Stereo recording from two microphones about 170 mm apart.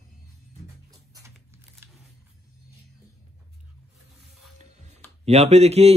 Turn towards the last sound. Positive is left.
turn(degrees=-40)  # may be behind; listen again after turning